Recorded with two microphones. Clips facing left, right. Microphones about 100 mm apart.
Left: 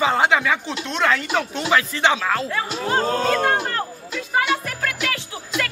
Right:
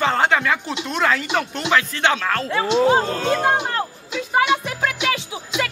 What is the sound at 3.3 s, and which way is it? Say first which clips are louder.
Speech: right 3 dB; 20° right (ahead or behind).